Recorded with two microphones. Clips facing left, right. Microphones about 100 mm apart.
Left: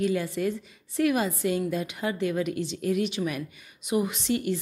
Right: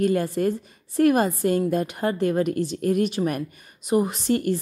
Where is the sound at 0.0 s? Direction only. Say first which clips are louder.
Right 5 dB; 50° right (ahead or behind).